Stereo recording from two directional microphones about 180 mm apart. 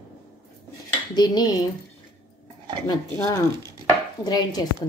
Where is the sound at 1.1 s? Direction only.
20° left (ahead or behind).